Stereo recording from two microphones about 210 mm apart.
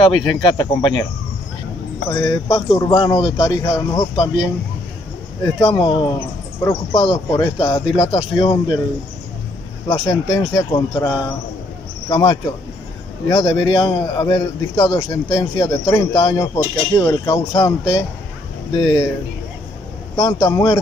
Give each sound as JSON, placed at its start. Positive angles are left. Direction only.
{"t": 0.0, "sound": "a man's voice", "side_deg": 20}
{"t": 2.0, "sound": "a man's voice", "side_deg": 15}
{"t": 5.4, "sound": "a man's voice", "side_deg": 20}
{"t": 9.8, "sound": "a man's voice", "side_deg": 20}
{"t": 20.2, "sound": "a man's voice", "side_deg": 20}